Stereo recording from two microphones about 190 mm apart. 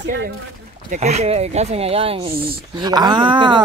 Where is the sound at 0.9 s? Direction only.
35° right (ahead or behind).